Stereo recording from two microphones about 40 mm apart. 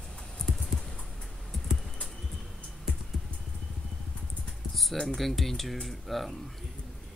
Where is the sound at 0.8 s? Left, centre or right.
Centre.